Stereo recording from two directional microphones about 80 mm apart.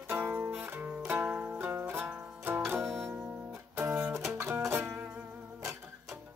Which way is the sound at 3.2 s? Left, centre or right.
Right.